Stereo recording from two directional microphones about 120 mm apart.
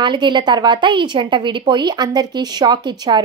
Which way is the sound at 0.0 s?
40° right (ahead or behind).